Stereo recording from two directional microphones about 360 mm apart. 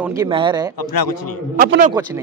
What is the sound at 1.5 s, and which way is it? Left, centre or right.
Speech, right.